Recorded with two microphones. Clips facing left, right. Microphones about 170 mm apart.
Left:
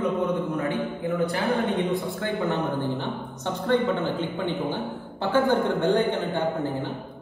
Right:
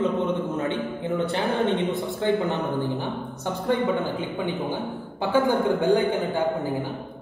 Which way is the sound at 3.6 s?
10° right (ahead or behind).